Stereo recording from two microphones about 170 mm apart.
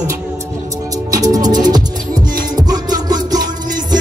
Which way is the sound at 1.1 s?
20° right (ahead or behind).